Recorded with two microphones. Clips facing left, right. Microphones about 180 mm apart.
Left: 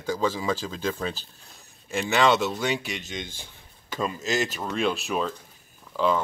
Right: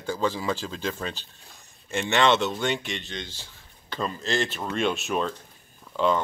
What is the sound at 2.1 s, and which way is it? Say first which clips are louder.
Speech: even; 5° left (ahead or behind).